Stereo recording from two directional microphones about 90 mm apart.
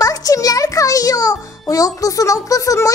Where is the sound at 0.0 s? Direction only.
40° left (ahead or behind).